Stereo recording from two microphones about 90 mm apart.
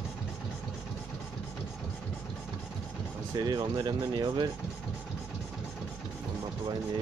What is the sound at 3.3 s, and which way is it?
Speech, 50° right (ahead or behind).